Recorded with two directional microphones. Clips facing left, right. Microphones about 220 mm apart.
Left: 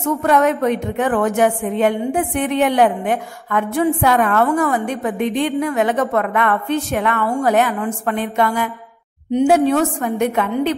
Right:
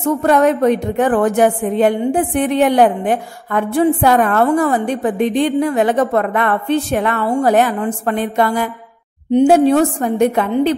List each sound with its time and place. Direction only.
0.2 s a woman's voice: 35° right (ahead or behind)